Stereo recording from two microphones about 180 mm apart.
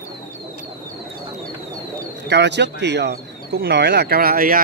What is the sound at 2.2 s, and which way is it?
Speech, 70° right (ahead or behind).